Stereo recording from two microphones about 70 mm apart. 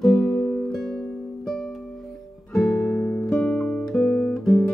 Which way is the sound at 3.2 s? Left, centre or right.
Centre.